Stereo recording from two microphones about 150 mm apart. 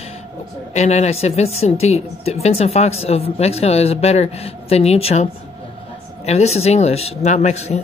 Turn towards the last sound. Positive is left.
turn(degrees=50)  # may be behind; listen again after turning